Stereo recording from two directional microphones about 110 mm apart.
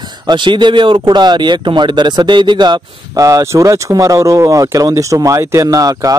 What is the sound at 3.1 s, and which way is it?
Speech, 30° right (ahead or behind).